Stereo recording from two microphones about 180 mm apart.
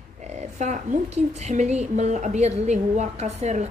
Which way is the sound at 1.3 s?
40° right (ahead or behind).